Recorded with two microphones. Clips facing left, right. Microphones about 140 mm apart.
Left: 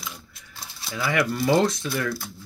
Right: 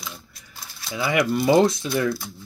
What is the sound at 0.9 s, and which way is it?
Speech, 15° right (ahead or behind).